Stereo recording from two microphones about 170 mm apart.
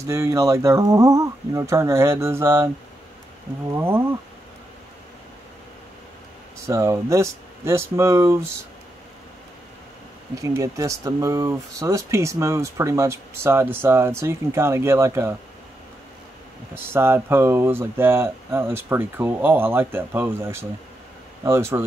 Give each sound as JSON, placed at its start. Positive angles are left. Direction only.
{"t": 0.0, "sound": "speech", "side_deg": -15}
{"t": 3.7, "sound": "speech", "side_deg": -15}
{"t": 6.7, "sound": "speech", "side_deg": -15}
{"t": 10.3, "sound": "speech", "side_deg": -20}
{"t": 16.7, "sound": "speech", "side_deg": -15}